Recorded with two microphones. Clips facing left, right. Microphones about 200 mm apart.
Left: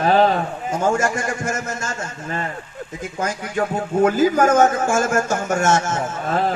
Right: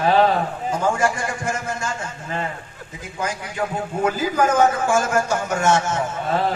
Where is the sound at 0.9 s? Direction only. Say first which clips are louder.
Left 1 dB; 45° left (ahead or behind).